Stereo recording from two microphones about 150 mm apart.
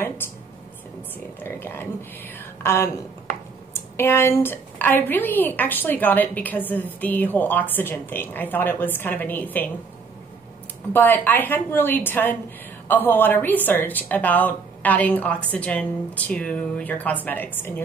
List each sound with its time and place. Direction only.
1.4 s a sound: 15° left (ahead or behind)
2.6 s a woman's voice: 15° left (ahead or behind)
10.9 s a woman's voice: 15° left (ahead or behind)